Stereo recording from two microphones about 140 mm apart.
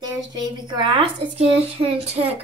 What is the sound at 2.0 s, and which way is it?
Speech, 45° right (ahead or behind).